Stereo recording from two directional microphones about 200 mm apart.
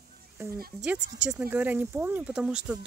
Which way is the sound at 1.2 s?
5° right (ahead or behind).